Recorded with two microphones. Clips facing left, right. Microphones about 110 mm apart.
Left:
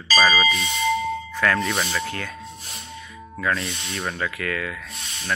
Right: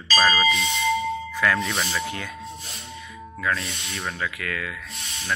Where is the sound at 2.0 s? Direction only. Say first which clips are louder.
Left 1 dB; 15° right (ahead or behind).